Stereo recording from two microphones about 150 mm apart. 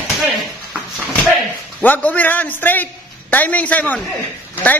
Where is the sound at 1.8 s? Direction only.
10° left (ahead or behind).